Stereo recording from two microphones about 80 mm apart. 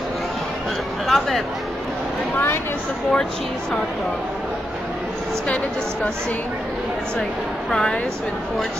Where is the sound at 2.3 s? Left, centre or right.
Left.